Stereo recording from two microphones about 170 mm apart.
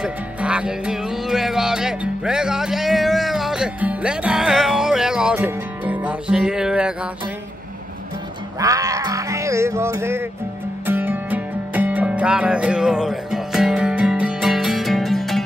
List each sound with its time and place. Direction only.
0.0 s music: 5° right (ahead or behind)
8.5 s speech: 20° right (ahead or behind)
10.9 s music: 10° right (ahead or behind)